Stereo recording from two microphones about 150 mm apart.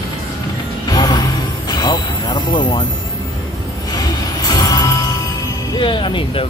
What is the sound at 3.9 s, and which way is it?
Music, 25° left (ahead or behind).